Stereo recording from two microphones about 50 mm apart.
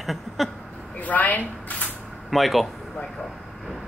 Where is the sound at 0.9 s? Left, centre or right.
Left.